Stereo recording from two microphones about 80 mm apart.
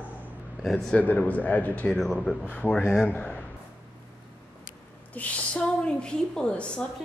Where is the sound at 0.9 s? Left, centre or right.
Centre.